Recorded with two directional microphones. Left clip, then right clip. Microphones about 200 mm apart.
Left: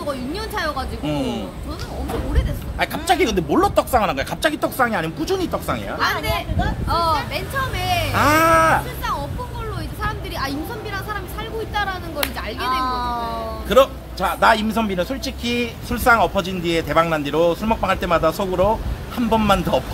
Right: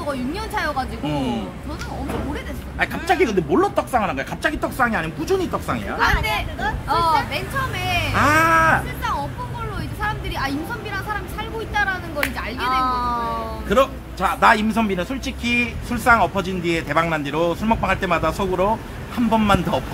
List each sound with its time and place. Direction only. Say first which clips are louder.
0.0 s a woman's voice: even; centre (ahead or behind)
1.0 s a man's voice: left 3 dB; 25° left (ahead or behind)
2.8 s speech: left 1 dB; 30° left (ahead or behind)
6.9 s a woman's voice: right 1 dB; centre (ahead or behind)
8.1 s a man's voice: left 1 dB; 30° left (ahead or behind)
10.0 s a woman's voice: right 1 dB; centre (ahead or behind)
12.8 s speech: right 1 dB; 25° right (ahead or behind)
13.7 s a man's voice: left 3 dB; 30° left (ahead or behind)
14.4 s a man's voice: even; 15° left (ahead or behind)